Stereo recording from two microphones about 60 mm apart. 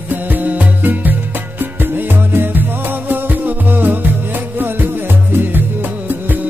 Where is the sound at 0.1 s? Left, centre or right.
Right.